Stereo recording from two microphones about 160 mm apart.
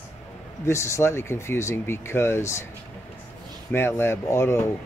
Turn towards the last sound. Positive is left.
turn(degrees=15)  # may be behind; listen again after turning